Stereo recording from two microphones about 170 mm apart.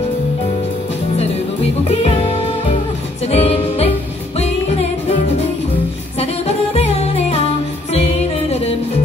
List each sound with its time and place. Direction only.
3.3 s music: 35° left (ahead or behind)
6.1 s music: 35° left (ahead or behind)